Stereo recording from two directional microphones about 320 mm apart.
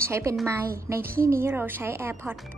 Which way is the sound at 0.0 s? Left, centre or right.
Centre.